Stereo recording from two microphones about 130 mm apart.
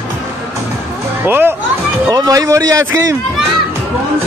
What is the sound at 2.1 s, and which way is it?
Speech, 30° right (ahead or behind).